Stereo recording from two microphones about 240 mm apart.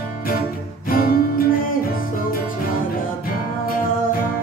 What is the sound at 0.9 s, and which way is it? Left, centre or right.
Music, left.